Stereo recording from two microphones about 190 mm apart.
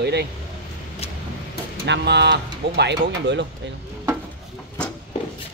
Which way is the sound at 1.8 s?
65° right (ahead or behind).